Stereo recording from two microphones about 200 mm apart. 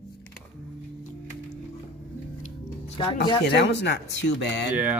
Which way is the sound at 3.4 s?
60° left (ahead or behind).